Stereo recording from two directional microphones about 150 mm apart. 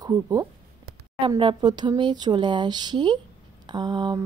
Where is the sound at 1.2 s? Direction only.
35° right (ahead or behind).